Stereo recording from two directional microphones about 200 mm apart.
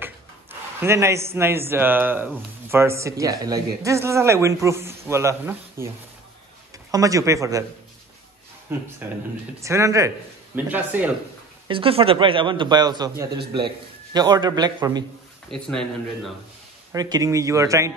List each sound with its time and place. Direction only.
0.0 s a man's voice: 10° right (ahead or behind)
6.9 s a man's voice: 15° right (ahead or behind)
8.7 s a man's voice: 10° right (ahead or behind)
11.6 s a man's voice: 25° right (ahead or behind)
15.5 s speech: 5° left (ahead or behind)
16.9 s a man's voice: 20° right (ahead or behind)